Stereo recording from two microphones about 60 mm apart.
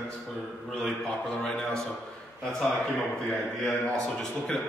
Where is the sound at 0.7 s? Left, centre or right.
Centre.